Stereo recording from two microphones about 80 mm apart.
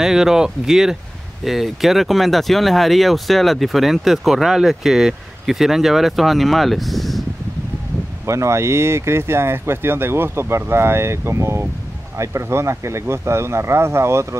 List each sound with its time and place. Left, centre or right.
0.0 s speech: centre
8.3 s speech: right